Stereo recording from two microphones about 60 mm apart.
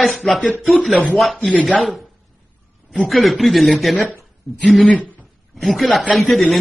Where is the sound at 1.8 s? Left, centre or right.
Centre.